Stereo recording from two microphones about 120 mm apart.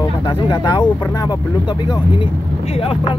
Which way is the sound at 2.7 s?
50° left (ahead or behind).